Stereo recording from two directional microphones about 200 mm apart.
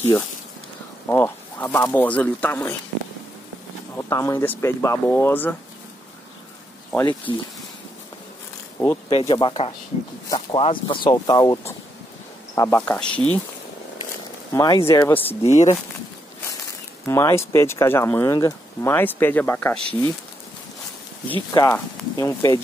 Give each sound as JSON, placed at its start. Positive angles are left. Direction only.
{"t": 1.0, "sound": "speech", "side_deg": 10}
{"t": 3.9, "sound": "speech", "side_deg": 15}
{"t": 7.0, "sound": "speech", "side_deg": 20}
{"t": 9.1, "sound": "speech", "side_deg": 25}
{"t": 14.5, "sound": "speech", "side_deg": 15}
{"t": 15.4, "sound": "speech", "side_deg": 35}
{"t": 17.0, "sound": "speech", "side_deg": 15}
{"t": 21.5, "sound": "speech", "side_deg": 15}